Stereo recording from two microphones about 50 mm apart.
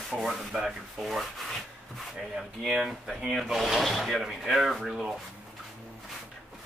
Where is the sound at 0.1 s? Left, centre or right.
Centre.